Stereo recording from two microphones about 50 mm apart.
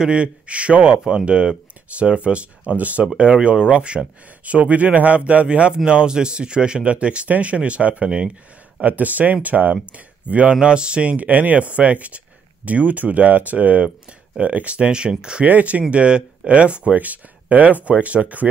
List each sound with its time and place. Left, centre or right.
0.0 s speech: right
10.5 s speech: centre
15.4 s speech: right